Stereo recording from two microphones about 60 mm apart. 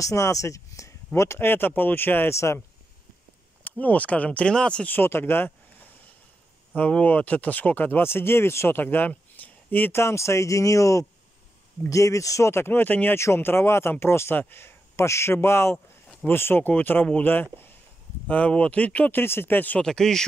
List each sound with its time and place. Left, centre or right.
0.0 s speech: left
1.4 s speech: left
2.3 s speech: left
3.6 s speech: left
4.8 s speech: left
6.7 s speech: left
8.8 s speech: left
10.0 s speech: left
13.1 s speech: left
18.3 s speech: left
19.2 s speech: left
19.8 s speech: centre